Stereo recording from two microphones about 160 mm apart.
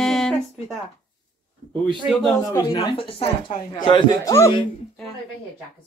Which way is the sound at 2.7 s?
30° left (ahead or behind).